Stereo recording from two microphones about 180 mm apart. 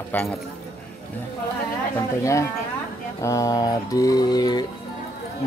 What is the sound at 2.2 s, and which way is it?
Speech, 15° left (ahead or behind).